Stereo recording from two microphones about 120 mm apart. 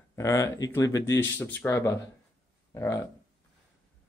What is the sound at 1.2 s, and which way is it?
Speech, 15° left (ahead or behind).